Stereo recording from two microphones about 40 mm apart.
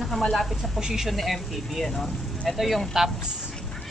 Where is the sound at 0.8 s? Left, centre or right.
Centre.